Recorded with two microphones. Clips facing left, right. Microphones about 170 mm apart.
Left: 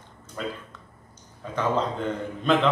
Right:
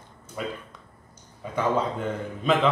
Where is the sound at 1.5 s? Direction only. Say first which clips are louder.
Even; 10° right (ahead or behind).